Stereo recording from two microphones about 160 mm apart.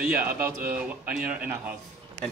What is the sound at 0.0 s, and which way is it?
A man's voice, 10° right (ahead or behind).